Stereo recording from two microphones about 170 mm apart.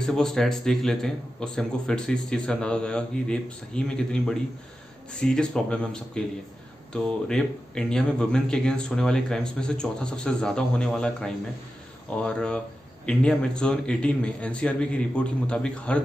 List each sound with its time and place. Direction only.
0.0 s a man's voice: 5° left (ahead or behind)